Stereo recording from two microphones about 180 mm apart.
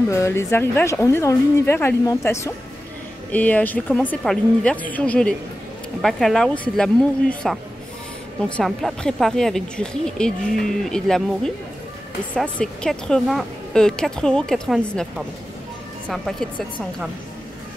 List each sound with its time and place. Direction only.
0.1 s a woman's voice: 15° left (ahead or behind)
8.5 s speech: 5° left (ahead or behind)